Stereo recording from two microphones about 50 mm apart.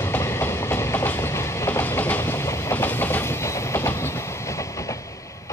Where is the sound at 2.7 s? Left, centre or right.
Left.